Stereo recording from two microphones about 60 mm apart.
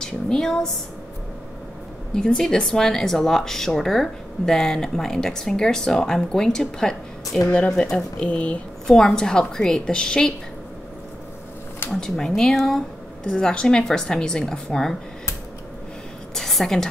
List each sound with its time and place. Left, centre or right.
0.0 s a woman's voice: centre
2.1 s speech: centre
8.3 s a sound: centre
8.8 s speech: centre
11.9 s speech: centre
16.3 s a sound: centre